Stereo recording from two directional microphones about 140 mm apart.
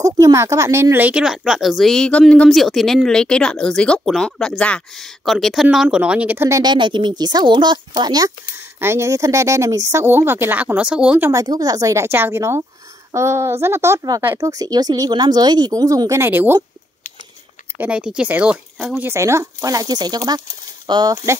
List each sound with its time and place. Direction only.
0.0 s speech: 25° right (ahead or behind)
6.6 s speech: 35° right (ahead or behind); by 11.4 s 15° right (ahead or behind)
11.4 s speech: 25° right (ahead or behind)
17.7 s speech: 10° right (ahead or behind)
19.0 s speech: 20° right (ahead or behind)